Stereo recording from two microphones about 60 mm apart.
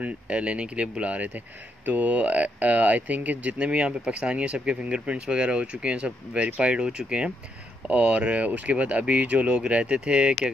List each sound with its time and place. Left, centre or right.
0.0 s speech: centre